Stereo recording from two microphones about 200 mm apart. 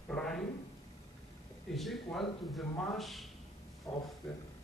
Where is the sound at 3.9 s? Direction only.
15° left (ahead or behind).